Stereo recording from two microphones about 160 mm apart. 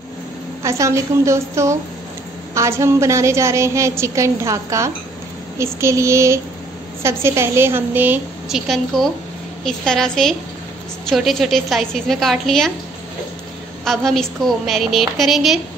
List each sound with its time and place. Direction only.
0.6 s a woman's voice: 20° right (ahead or behind); by 12.7 s centre (ahead or behind)
13.8 s a woman's voice: centre (ahead or behind)